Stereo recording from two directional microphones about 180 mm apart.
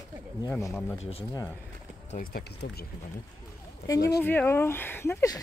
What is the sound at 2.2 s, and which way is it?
Speech, 60° left (ahead or behind).